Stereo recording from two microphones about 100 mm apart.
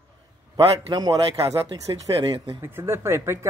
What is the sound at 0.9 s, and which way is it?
Speech, 45° right (ahead or behind).